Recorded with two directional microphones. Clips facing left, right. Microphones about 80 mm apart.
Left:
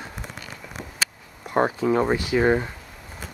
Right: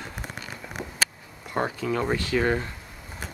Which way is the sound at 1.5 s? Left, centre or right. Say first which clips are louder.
Left 6 dB; left.